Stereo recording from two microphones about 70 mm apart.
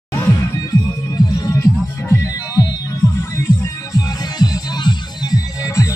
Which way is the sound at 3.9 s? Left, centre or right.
Left.